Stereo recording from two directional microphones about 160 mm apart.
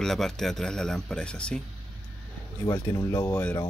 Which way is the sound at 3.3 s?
10° left (ahead or behind).